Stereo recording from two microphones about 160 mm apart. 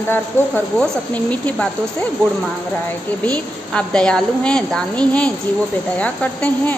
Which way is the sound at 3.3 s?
5° left (ahead or behind).